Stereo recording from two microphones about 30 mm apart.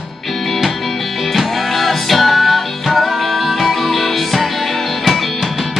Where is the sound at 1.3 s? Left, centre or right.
Centre.